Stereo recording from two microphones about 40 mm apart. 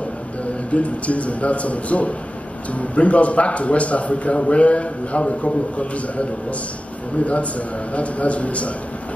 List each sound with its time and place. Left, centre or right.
0.7 s a man's voice: left
7.9 s a man's voice: left